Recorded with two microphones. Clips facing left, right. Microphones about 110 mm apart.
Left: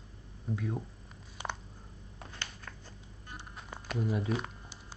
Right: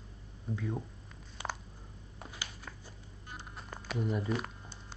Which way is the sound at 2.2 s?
10° right (ahead or behind).